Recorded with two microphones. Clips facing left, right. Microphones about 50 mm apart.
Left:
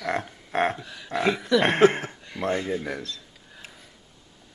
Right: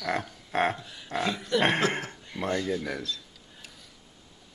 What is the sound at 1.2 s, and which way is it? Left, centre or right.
Speech, left.